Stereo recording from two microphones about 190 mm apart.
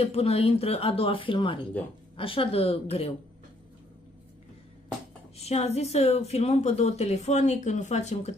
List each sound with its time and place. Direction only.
0.0 s a woman's voice: 30° left (ahead or behind)
5.4 s a woman's voice: 35° left (ahead or behind)